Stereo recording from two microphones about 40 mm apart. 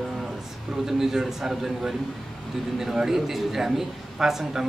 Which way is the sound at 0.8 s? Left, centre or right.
Centre.